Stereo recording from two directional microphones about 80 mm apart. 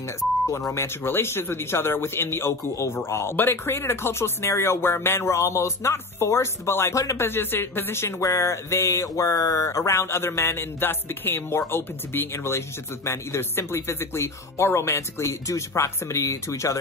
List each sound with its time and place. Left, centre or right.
0.5 s speech: left
7.2 s speech: left